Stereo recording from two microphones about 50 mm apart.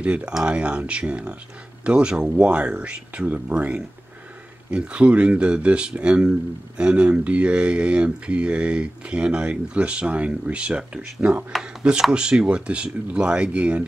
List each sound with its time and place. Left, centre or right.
0.0 s speech: right
11.6 s speech: centre